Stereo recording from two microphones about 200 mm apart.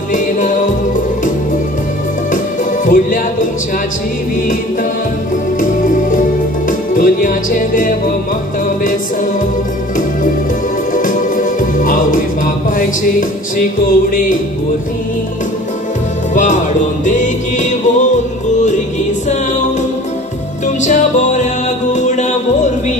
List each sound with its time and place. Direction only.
0.1 s music: 40° left (ahead or behind)
2.3 s music: 40° left (ahead or behind)
5.6 s music: 40° left (ahead or behind)
11.0 s music: 40° left (ahead or behind)
16.3 s music: 40° left (ahead or behind)
20.6 s music: 35° left (ahead or behind)